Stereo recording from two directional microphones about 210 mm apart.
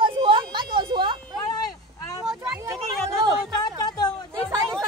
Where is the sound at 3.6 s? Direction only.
20° left (ahead or behind).